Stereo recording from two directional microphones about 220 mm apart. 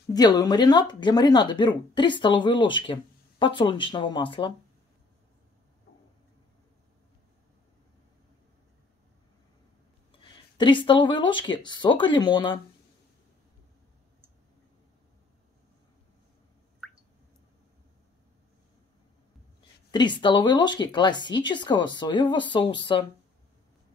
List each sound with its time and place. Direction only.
0.1 s speech: 15° left (ahead or behind)
10.2 s speech: 20° left (ahead or behind)
19.9 s speech: 20° left (ahead or behind)